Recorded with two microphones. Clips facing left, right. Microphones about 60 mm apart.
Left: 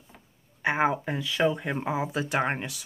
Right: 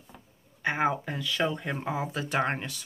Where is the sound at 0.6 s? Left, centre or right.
Centre.